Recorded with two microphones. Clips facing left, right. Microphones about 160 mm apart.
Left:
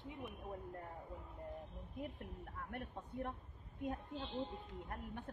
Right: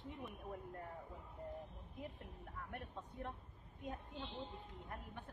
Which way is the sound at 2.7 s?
60° left (ahead or behind).